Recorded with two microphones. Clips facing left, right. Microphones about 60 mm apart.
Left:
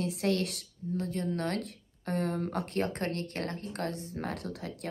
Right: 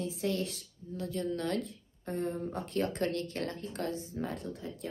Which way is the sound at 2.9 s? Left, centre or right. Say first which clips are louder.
Right 1 dB; left.